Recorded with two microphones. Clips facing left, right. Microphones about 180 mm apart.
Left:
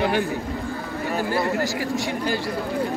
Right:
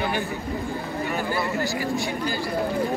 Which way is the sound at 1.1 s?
35° left (ahead or behind).